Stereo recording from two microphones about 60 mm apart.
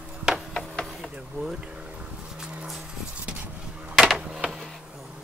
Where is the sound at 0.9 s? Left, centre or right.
Centre.